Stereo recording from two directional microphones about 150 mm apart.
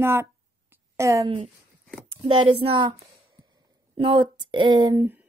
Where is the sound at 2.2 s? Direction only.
35° right (ahead or behind).